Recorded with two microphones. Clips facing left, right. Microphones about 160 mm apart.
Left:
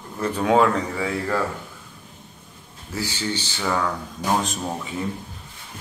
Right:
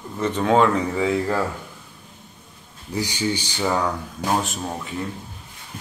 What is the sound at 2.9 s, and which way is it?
Speech, 15° right (ahead or behind).